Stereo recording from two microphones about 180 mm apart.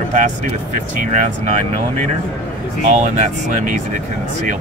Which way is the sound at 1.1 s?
40° right (ahead or behind).